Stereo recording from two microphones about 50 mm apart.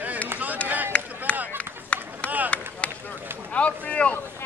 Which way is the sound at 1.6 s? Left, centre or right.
Left.